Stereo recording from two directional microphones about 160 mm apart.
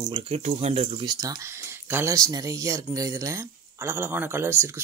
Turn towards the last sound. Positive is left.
turn(degrees=-15)  # may be behind; listen again after turning